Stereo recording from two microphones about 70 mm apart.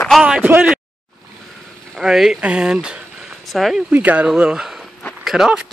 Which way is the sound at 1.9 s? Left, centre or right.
Centre.